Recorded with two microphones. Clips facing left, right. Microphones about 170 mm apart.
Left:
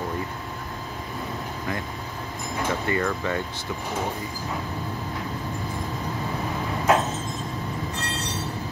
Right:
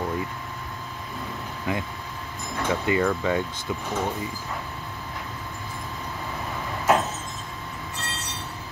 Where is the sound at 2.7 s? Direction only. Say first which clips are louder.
Right 3 dB; 15° right (ahead or behind).